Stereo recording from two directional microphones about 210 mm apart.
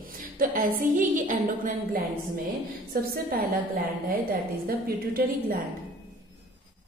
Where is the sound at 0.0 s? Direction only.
40° right (ahead or behind).